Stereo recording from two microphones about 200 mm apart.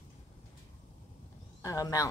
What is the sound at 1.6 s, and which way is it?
Speech, 20° left (ahead or behind).